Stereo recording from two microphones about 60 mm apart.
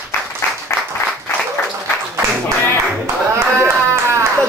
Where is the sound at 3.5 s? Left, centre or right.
Right.